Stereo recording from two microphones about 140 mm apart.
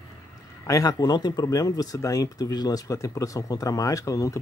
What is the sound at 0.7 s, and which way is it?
Speech, 25° left (ahead or behind).